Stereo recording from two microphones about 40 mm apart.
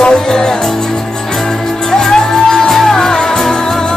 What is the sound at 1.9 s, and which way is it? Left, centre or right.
Music, centre.